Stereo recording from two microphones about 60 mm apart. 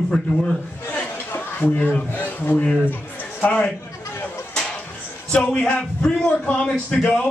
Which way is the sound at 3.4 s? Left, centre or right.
Centre.